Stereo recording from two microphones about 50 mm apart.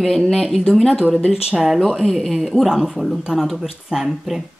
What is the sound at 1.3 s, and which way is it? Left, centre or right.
A woman's voice, centre.